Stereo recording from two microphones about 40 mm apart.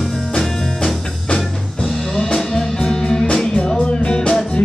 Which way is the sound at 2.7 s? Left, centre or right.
Centre.